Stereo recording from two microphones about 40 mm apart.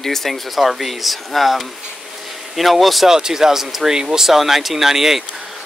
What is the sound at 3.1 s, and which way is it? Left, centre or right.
Speech, centre.